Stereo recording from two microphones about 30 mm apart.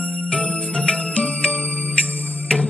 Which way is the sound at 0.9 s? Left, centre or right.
Left.